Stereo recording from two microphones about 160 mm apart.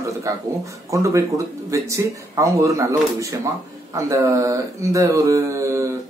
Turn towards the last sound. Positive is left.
turn(degrees=-20)  # may be behind; listen again after turning